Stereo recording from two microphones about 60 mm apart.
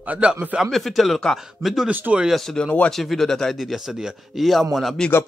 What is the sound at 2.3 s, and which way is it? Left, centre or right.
Speech, centre.